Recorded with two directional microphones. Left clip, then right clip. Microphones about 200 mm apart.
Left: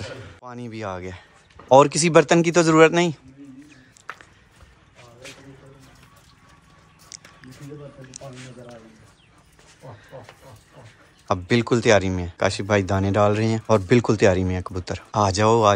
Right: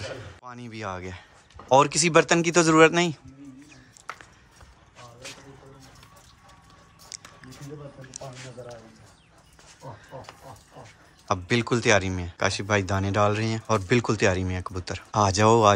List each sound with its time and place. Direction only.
0.0 s speech: 10° right (ahead or behind)
7.1 s a sound: 25° right (ahead or behind)
11.2 s speech: 15° right (ahead or behind)